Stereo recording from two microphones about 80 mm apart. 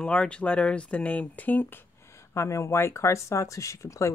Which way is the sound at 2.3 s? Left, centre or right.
Left.